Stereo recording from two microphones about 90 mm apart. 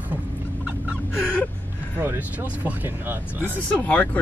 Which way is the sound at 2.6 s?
20° right (ahead or behind).